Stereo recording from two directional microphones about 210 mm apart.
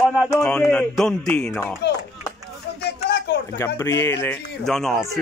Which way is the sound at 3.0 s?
50° left (ahead or behind).